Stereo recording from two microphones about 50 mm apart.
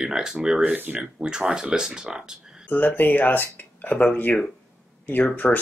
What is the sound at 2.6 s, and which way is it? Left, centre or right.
Speech, left.